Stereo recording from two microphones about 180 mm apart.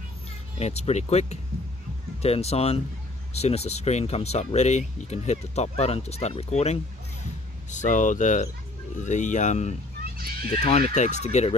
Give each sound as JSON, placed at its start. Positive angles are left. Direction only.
{"t": 0.6, "sound": "speech", "side_deg": 35}